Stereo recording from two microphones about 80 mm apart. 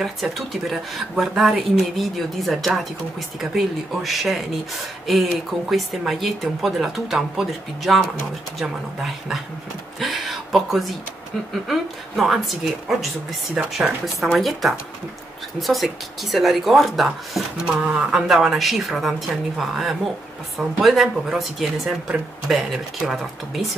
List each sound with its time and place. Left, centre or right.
0.0 s speech: centre
17.6 s speech: centre